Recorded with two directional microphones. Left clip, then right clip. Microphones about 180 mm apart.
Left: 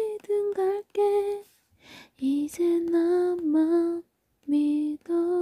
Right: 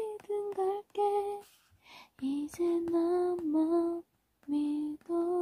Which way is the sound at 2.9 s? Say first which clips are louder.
Left 6 dB; 30° left (ahead or behind).